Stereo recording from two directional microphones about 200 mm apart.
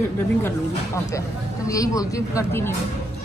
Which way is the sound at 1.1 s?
15° left (ahead or behind).